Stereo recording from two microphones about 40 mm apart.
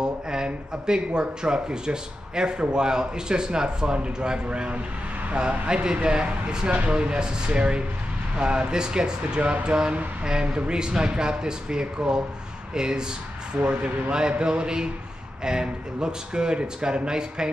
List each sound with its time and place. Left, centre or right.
0.0 s speech: centre